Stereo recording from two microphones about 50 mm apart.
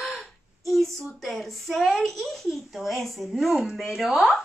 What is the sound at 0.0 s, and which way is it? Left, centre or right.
A child's voice, centre.